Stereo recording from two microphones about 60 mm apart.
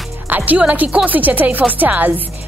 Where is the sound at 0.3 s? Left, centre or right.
Right.